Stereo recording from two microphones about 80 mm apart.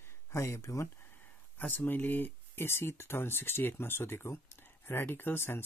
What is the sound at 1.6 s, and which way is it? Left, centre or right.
Speech, left.